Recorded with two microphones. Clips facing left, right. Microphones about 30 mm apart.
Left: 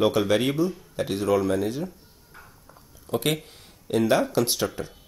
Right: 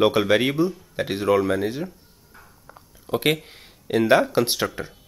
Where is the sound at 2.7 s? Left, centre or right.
Right.